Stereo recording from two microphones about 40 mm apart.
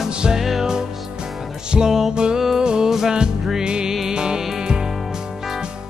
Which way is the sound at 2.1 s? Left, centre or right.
Right.